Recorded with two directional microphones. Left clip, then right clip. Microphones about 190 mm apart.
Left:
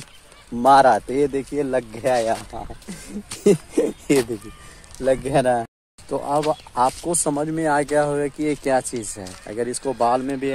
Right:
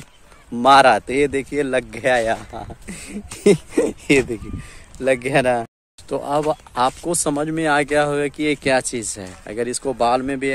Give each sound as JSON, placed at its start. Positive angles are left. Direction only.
{"t": 0.5, "sound": "a man's voice", "side_deg": 0}
{"t": 0.8, "sound": "a man's voice", "side_deg": -20}
{"t": 3.7, "sound": "a sound", "side_deg": -10}
{"t": 4.9, "sound": "a man's voice", "side_deg": -5}
{"t": 6.0, "sound": "speech", "side_deg": -20}